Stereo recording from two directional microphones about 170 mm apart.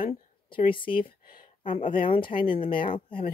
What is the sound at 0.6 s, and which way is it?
A woman's voice, 30° left (ahead or behind).